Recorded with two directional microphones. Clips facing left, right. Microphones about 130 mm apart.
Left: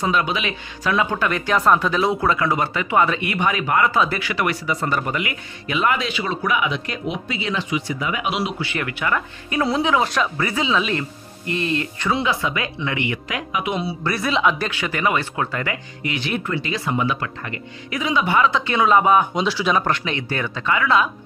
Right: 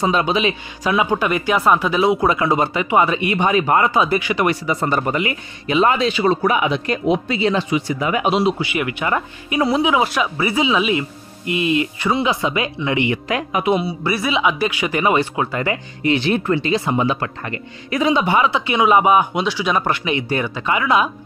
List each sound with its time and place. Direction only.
0.0 s speech: 25° right (ahead or behind); by 2.1 s 5° right (ahead or behind)
2.1 s speech: 20° right (ahead or behind)
3.9 s speech: 15° right (ahead or behind); by 8.3 s 40° right (ahead or behind)
8.3 s speech: 30° right (ahead or behind)
8.5 s speech: 15° right (ahead or behind)
12.2 s speech: 20° right (ahead or behind)
13.3 s speech: 40° right (ahead or behind)
13.8 s speech: 5° right (ahead or behind)
15.6 s speech: 30° right (ahead or behind)
17.2 s speech: 40° right (ahead or behind)
18.2 s speech: 20° right (ahead or behind)
19.4 s speech: centre (ahead or behind); by 21.1 s 15° right (ahead or behind)